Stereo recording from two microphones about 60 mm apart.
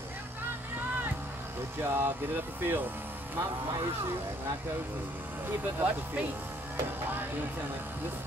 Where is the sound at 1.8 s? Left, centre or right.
Right.